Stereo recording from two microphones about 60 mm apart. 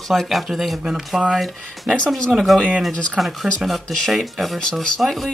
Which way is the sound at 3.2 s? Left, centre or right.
Centre.